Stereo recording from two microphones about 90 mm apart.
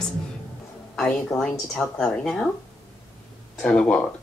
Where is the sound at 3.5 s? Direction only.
5° left (ahead or behind).